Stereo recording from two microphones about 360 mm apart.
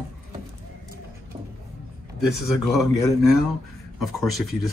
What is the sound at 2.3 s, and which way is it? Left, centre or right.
Speech, centre.